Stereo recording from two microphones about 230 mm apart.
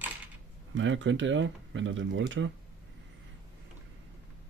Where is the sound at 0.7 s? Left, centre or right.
Right.